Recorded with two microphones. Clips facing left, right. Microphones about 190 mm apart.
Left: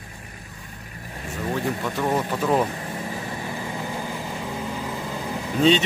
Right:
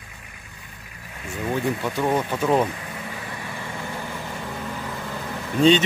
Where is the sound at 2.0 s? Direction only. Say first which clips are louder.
Even; 5° right (ahead or behind).